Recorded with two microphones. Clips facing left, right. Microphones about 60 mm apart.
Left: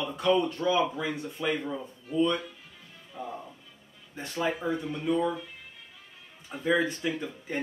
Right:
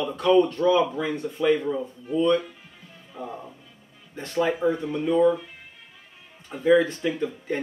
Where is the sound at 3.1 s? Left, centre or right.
Centre.